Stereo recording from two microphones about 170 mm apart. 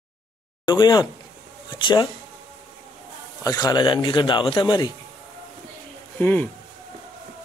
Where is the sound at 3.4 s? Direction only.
20° left (ahead or behind).